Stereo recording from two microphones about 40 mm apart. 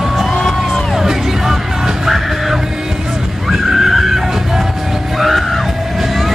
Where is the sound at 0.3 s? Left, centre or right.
Centre.